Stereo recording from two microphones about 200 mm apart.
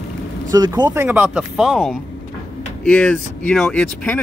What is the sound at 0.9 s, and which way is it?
Speech, 10° right (ahead or behind).